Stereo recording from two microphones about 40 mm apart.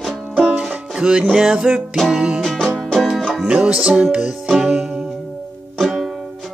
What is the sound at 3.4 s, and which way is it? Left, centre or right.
Music, right.